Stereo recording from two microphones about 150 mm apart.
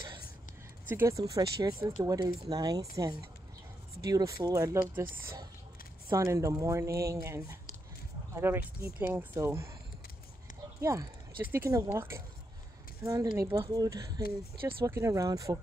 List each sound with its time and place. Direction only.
0.8 s speech: 15° right (ahead or behind)
6.0 s speech: 20° right (ahead or behind)
10.8 s speech: 20° right (ahead or behind)